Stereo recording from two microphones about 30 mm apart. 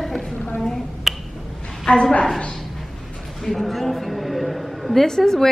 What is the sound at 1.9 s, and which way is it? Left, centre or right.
Speech, left.